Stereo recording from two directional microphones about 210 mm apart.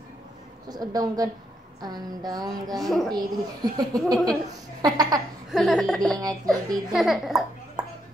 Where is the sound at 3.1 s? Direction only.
20° right (ahead or behind).